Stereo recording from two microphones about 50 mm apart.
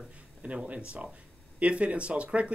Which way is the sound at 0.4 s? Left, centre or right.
Right.